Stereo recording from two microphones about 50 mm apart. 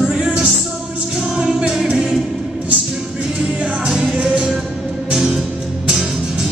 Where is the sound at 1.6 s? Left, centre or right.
Centre.